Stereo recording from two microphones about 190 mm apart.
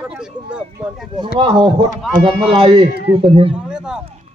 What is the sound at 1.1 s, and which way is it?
Speech, 25° right (ahead or behind).